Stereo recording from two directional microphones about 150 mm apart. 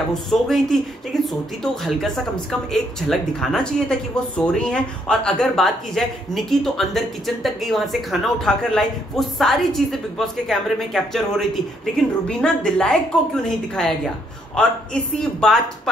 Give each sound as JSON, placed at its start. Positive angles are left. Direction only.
{"t": 0.1, "sound": "speech", "side_deg": 0}